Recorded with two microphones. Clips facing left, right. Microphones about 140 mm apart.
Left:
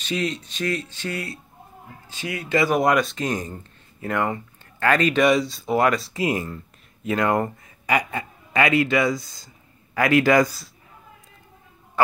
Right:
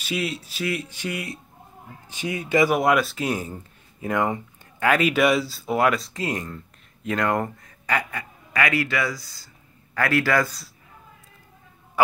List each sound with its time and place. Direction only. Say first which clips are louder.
0.0 s speech: left 2 dB; 5° right (ahead or behind)
2.7 s a man's voice: left 1 dB; 5° right (ahead or behind); by 8.1 s 10° left (ahead or behind)
8.1 s a man's voice: left 4 dB; 25° left (ahead or behind)